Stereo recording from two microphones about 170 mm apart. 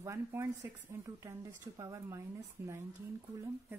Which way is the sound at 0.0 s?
15° right (ahead or behind).